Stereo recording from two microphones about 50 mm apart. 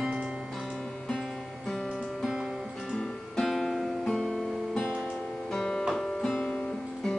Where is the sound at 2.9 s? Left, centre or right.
Centre.